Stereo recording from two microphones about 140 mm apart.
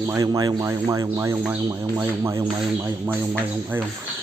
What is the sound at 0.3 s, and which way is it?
Speech, 30° right (ahead or behind).